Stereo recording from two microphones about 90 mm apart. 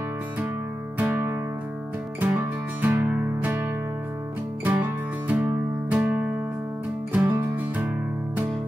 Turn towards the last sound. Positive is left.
turn(degrees=-20)  # may be behind; listen again after turning